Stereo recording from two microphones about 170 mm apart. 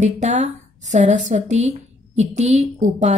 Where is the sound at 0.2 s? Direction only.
45° right (ahead or behind).